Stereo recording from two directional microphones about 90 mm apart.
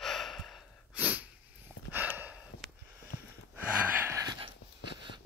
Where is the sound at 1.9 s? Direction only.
20° right (ahead or behind).